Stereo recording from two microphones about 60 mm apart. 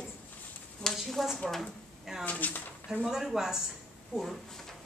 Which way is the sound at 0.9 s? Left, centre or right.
Centre.